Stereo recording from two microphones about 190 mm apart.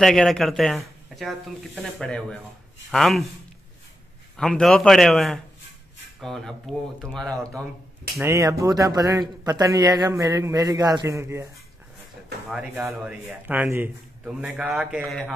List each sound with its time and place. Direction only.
0.0 s a man's voice: centre (ahead or behind)
4.4 s a man's voice: 5° left (ahead or behind)
8.2 s speech: 15° right (ahead or behind)
12.4 s a man's voice: 5° right (ahead or behind)